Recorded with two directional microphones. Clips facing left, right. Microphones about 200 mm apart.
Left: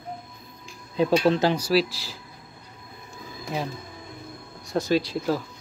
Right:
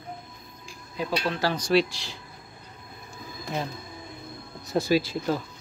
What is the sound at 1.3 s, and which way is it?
Speech, 20° left (ahead or behind).